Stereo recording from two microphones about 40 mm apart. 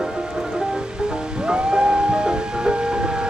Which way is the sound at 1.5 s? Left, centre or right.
Right.